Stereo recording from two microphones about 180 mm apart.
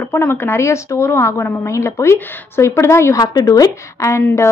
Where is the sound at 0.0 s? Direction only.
10° left (ahead or behind).